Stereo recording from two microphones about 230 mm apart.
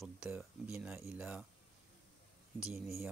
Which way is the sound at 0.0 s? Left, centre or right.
Centre.